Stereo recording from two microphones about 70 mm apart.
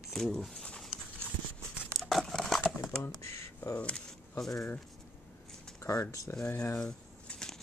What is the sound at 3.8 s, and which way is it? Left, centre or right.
Speech, centre.